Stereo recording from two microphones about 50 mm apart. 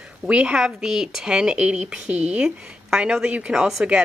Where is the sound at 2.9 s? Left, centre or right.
Centre.